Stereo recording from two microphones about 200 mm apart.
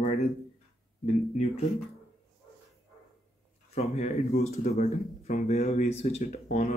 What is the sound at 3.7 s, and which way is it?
Speech, 35° left (ahead or behind).